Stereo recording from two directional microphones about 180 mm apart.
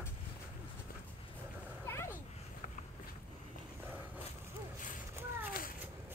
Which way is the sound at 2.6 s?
45° left (ahead or behind).